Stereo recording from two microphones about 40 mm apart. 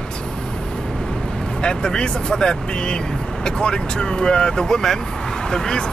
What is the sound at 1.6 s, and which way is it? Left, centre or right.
Speech, left.